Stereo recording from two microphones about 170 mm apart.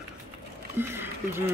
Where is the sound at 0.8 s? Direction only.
15° right (ahead or behind).